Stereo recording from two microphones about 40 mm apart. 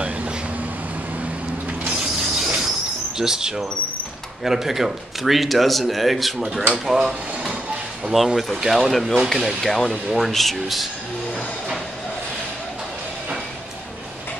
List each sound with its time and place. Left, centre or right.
2.0 s vehicle: centre
3.2 s speech: centre
8.5 s speech: centre